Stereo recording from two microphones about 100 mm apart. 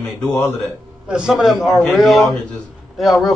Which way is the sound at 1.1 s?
5° right (ahead or behind).